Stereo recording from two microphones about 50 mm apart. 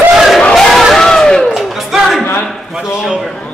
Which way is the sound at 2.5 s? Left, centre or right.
Centre.